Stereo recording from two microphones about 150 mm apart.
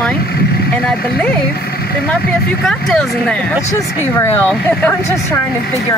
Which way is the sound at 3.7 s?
20° left (ahead or behind).